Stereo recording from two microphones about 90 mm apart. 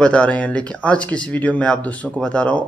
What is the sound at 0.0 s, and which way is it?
Speech, 10° left (ahead or behind).